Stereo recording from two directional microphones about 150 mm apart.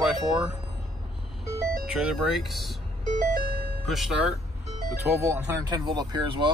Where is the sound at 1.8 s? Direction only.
5° right (ahead or behind).